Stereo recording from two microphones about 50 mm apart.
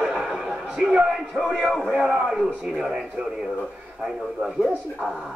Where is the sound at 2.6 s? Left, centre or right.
Centre.